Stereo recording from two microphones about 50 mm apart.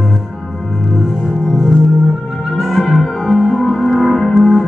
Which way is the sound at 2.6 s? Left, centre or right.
Centre.